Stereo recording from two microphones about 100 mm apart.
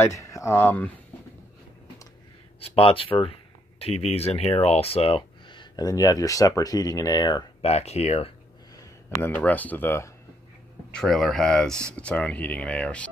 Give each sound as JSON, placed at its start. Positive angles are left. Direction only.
{"t": 0.0, "sound": "speech", "side_deg": 30}
{"t": 2.6, "sound": "speech", "side_deg": 70}
{"t": 3.8, "sound": "speech", "side_deg": 90}
{"t": 7.6, "sound": "speech", "side_deg": 90}
{"t": 9.2, "sound": "speech", "side_deg": 15}
{"t": 10.9, "sound": "speech", "side_deg": 5}